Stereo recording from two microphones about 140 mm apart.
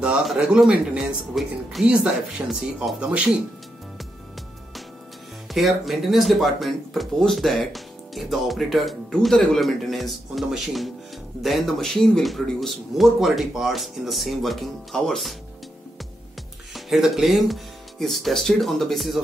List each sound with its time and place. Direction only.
0.0 s speech: 5° right (ahead or behind)
5.5 s speech: centre (ahead or behind)
16.7 s speech: centre (ahead or behind)